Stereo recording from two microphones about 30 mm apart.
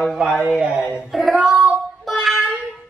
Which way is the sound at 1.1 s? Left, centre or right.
Centre.